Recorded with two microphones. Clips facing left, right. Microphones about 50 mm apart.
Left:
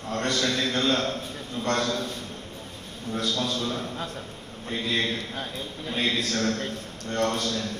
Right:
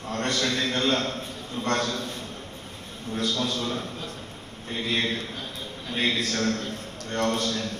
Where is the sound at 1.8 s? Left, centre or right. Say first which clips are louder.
Left 1 dB; left.